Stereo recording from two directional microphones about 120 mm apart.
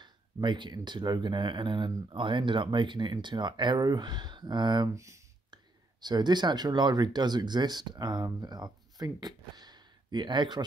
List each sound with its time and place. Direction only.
0.0 s speech: 40° right (ahead or behind)
4.9 s speech: 25° right (ahead or behind)
5.5 s speech: 35° right (ahead or behind)